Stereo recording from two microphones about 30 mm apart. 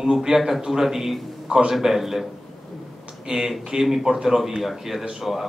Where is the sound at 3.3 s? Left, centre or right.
Centre.